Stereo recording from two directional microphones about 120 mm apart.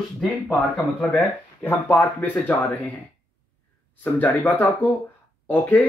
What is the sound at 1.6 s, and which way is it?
Speech, 20° left (ahead or behind).